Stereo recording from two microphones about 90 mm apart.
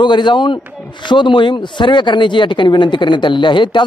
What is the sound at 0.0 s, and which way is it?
Speech, 60° left (ahead or behind).